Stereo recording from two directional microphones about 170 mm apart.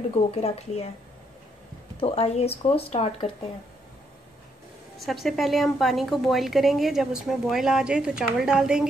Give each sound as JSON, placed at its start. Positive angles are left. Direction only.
{"t": 0.1, "sound": "speech", "side_deg": 35}
{"t": 2.0, "sound": "speech", "side_deg": 35}
{"t": 4.9, "sound": "a woman's voice", "side_deg": 0}